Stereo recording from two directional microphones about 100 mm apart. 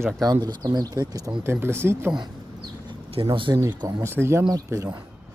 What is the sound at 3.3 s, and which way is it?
Speech, 50° right (ahead or behind).